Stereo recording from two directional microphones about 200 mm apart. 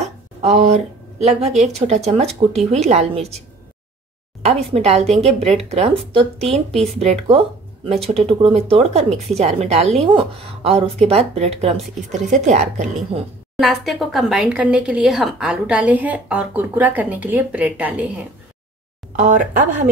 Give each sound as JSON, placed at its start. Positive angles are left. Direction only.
{"t": 0.4, "sound": "speech", "side_deg": -35}
{"t": 4.7, "sound": "speech", "side_deg": -30}
{"t": 13.6, "sound": "speech", "side_deg": 0}
{"t": 19.1, "sound": "speech", "side_deg": -40}